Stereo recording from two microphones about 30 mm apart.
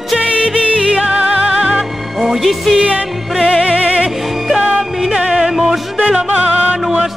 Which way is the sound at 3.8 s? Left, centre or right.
Right.